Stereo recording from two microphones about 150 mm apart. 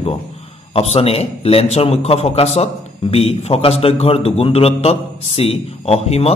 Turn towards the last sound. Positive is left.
turn(degrees=45)  # may be behind; listen again after turning